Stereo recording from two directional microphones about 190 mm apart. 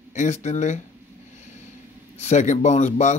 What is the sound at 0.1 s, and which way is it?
Speech, 40° left (ahead or behind).